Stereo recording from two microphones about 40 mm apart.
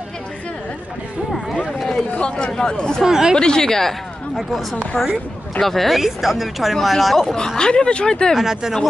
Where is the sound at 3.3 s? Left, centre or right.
Centre.